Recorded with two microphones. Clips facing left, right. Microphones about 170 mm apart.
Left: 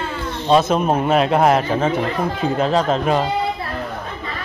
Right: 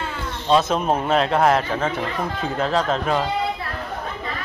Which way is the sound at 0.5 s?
10° left (ahead or behind).